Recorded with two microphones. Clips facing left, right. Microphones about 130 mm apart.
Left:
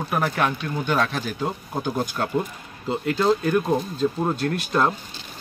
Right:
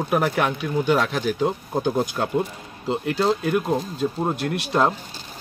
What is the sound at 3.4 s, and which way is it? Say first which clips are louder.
Speech: left 1 dB; 10° right (ahead or behind).